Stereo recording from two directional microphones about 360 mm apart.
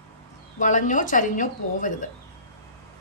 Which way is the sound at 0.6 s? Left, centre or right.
Left.